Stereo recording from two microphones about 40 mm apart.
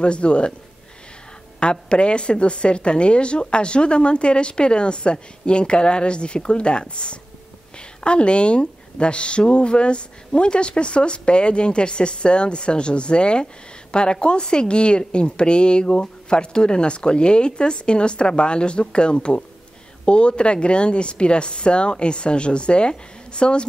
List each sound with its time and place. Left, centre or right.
0.0 s speech: left
1.6 s speech: left